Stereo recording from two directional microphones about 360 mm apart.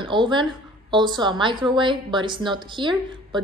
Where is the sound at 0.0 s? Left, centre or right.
Centre.